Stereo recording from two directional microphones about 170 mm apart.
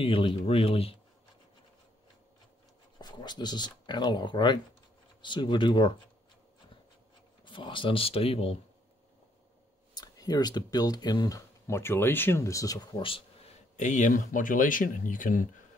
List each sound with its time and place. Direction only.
0.0 s speech: 30° left (ahead or behind)
3.0 s speech: 25° left (ahead or behind)
7.4 s speech: 30° left (ahead or behind)
9.9 s speech: 20° left (ahead or behind)
13.7 s speech: 45° left (ahead or behind)